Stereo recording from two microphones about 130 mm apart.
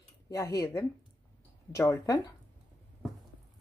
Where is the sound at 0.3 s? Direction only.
25° left (ahead or behind).